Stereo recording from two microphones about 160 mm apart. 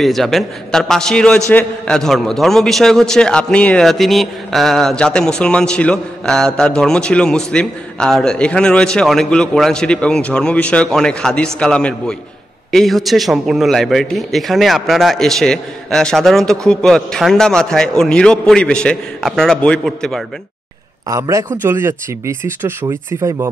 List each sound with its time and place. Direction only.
0.0 s a man's voice: centre (ahead or behind)
21.1 s a man's voice: 20° right (ahead or behind)